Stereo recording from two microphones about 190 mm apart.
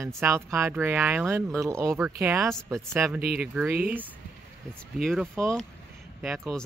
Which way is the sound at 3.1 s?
55° right (ahead or behind).